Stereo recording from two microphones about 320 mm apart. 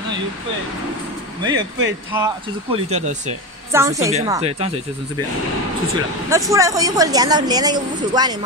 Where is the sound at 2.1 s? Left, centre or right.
Centre.